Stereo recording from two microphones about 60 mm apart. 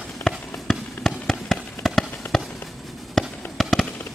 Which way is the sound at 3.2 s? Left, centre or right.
Centre.